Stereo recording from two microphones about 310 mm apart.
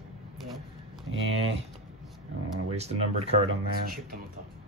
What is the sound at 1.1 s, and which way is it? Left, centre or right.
Speech, right.